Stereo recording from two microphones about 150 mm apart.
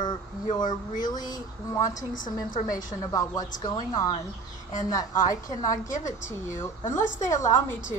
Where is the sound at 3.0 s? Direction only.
20° left (ahead or behind).